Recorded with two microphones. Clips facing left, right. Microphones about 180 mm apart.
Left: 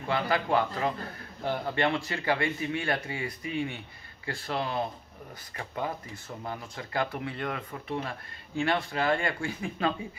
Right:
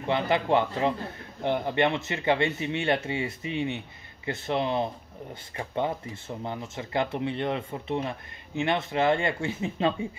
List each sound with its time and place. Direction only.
0.0 s speech: 25° right (ahead or behind)